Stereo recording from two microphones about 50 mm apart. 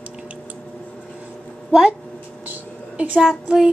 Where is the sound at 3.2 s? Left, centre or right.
Centre.